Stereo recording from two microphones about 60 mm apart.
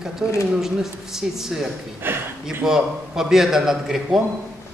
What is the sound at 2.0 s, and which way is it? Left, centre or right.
Speech, right.